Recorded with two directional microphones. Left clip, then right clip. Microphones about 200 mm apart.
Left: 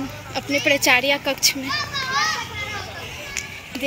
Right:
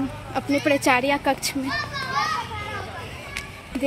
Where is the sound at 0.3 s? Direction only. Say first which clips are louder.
Left 2 dB; 45° right (ahead or behind).